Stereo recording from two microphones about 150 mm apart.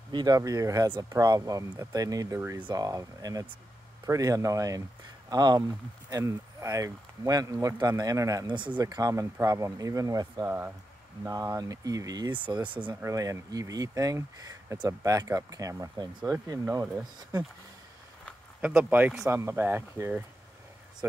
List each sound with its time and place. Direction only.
0.1 s speech: 25° right (ahead or behind)
13.0 s speech: 20° right (ahead or behind)
18.6 s speech: 10° right (ahead or behind)